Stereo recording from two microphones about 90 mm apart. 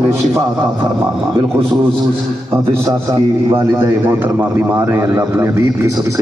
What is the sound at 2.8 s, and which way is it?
Speech, 35° right (ahead or behind).